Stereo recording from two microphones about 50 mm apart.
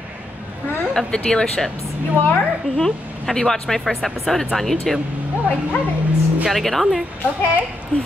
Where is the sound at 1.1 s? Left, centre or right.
Centre.